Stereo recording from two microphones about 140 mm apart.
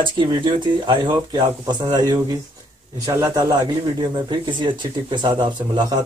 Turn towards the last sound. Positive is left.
turn(degrees=-30)  # may be behind; listen again after turning